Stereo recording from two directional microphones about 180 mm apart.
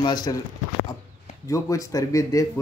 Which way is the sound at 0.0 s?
25° left (ahead or behind).